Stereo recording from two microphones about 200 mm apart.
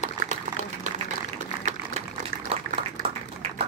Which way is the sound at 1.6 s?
30° right (ahead or behind).